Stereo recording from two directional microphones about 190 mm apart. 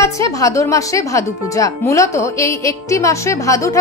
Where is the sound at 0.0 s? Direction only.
15° left (ahead or behind).